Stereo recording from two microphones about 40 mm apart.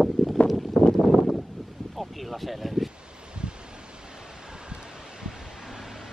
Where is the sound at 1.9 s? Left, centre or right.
Centre.